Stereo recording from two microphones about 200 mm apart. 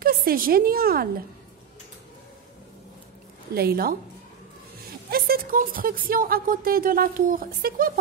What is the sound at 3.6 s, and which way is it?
Speech, 50° right (ahead or behind).